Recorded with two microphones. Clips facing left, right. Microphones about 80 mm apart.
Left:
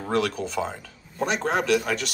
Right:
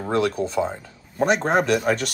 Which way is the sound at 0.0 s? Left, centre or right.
Right.